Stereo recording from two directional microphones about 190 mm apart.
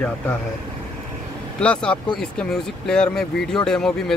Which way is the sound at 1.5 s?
5° left (ahead or behind).